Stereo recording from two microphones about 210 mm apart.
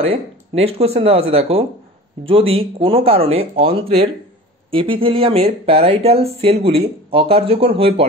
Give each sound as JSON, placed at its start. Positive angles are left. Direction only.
{"t": 0.1, "sound": "speech", "side_deg": -30}